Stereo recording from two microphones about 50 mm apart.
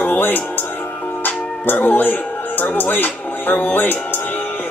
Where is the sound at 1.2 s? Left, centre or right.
Left.